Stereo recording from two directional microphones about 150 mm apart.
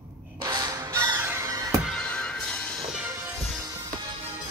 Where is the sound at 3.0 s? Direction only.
15° right (ahead or behind).